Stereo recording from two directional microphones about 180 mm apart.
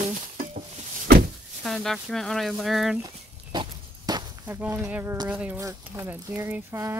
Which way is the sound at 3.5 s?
20° right (ahead or behind).